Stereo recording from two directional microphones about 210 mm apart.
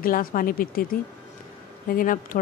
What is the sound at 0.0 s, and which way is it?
Speech, 40° left (ahead or behind).